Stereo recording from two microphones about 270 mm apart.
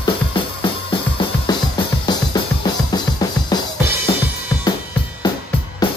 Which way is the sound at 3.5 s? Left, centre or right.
Centre.